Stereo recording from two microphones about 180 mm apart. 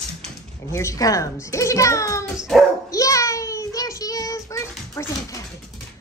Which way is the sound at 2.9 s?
20° left (ahead or behind).